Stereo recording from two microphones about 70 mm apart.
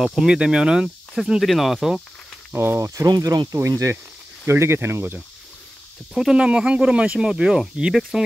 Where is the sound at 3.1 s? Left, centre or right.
Right.